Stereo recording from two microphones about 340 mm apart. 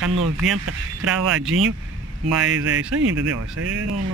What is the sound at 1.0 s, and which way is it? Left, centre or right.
Speech, right.